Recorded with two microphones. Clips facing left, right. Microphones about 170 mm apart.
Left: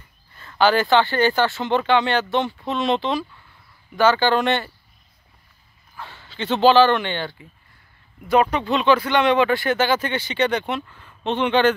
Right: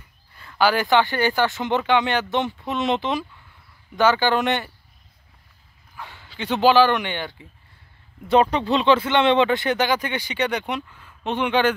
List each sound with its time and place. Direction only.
0.6 s speech: 10° right (ahead or behind)
5.9 s speech: 15° right (ahead or behind)
8.3 s speech: 30° right (ahead or behind); by 11.7 s 10° right (ahead or behind)